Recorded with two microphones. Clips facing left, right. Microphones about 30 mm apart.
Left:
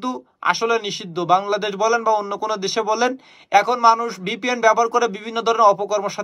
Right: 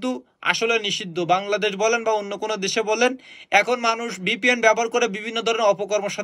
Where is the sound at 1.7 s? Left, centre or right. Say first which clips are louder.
Left 6 dB; centre.